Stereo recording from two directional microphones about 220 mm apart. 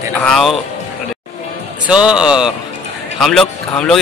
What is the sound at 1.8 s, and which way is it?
A man's voice, 5° right (ahead or behind).